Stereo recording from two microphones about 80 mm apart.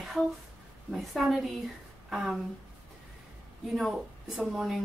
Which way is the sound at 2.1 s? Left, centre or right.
Centre.